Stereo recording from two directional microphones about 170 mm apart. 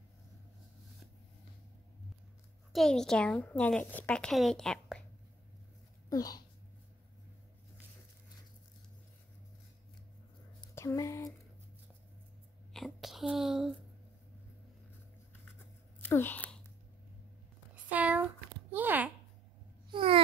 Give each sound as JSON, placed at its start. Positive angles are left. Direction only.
{"t": 2.7, "sound": "a woman's voice", "side_deg": 0}
{"t": 6.0, "sound": "speech", "side_deg": 20}
{"t": 10.7, "sound": "a sound", "side_deg": 15}
{"t": 12.7, "sound": "speech", "side_deg": 0}
{"t": 16.0, "sound": "speech", "side_deg": 10}
{"t": 17.8, "sound": "speech", "side_deg": -10}
{"t": 18.7, "sound": "a sound", "side_deg": -10}
{"t": 19.9, "sound": "babbling", "side_deg": -30}